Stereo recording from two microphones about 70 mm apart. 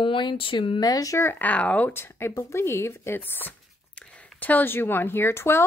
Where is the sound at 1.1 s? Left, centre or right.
Left.